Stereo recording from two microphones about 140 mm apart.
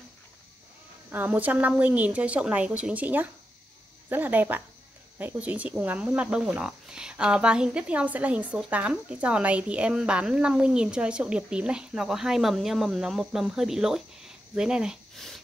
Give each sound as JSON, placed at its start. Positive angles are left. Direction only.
{"t": 1.1, "sound": "speech", "side_deg": -10}